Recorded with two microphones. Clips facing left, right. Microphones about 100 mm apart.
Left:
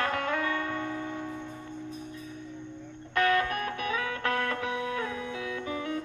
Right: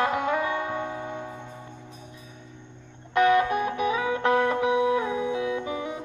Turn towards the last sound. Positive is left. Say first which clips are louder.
# right 3 dB
turn(degrees=-15)  # may be behind; listen again after turning